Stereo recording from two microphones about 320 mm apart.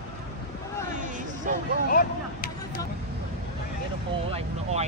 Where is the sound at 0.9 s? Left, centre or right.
Right.